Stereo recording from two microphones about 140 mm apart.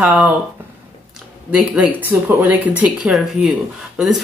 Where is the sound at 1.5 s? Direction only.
10° right (ahead or behind).